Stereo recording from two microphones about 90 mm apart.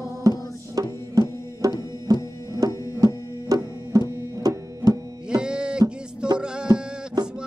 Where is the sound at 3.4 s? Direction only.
40° right (ahead or behind).